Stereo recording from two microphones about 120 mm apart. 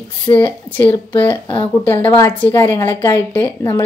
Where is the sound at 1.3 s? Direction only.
45° left (ahead or behind).